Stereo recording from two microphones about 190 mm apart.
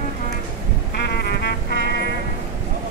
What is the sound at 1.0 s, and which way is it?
Music, 60° left (ahead or behind).